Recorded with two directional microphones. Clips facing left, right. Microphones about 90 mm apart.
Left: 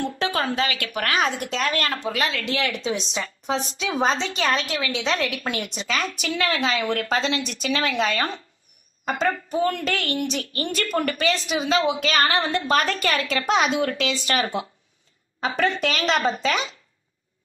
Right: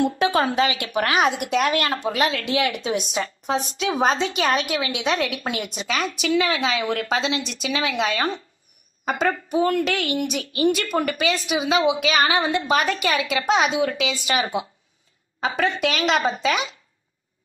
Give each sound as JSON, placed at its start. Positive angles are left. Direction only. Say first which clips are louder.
{"t": 0.0, "sound": "a woman's voice", "louder": "right 5 dB", "side_deg": -20}